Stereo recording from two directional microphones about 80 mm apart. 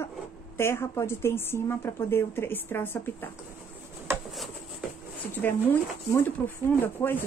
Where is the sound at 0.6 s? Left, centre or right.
Left.